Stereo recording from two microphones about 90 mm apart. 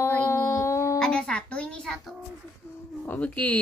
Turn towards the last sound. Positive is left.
turn(degrees=15)  # may be behind; listen again after turning